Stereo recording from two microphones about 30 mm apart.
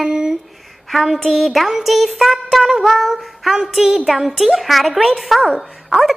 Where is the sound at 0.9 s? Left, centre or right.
Centre.